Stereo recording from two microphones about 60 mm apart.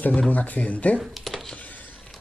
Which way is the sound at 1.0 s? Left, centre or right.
Centre.